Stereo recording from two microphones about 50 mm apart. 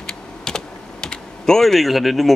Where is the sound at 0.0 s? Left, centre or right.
Centre.